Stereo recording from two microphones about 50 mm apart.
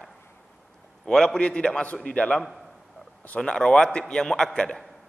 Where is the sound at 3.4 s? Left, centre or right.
Centre.